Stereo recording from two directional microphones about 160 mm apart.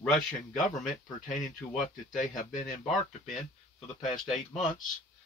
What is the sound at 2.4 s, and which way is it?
Speech, 55° left (ahead or behind).